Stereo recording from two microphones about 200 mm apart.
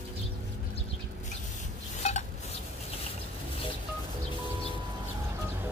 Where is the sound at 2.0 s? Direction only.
35° left (ahead or behind).